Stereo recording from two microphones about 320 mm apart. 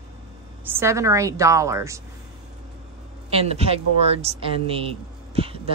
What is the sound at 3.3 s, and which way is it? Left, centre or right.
A woman's voice, centre.